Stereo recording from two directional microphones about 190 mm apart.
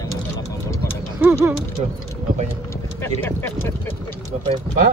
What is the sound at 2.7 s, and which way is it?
Speech, 15° left (ahead or behind).